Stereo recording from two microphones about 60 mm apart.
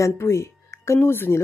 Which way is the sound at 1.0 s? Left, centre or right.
Left.